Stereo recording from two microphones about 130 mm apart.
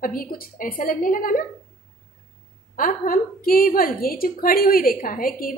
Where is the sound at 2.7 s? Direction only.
90° left.